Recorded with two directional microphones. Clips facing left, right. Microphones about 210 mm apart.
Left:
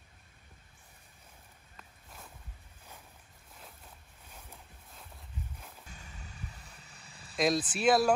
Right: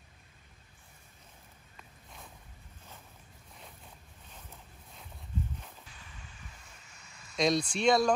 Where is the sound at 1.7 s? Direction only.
5° left (ahead or behind).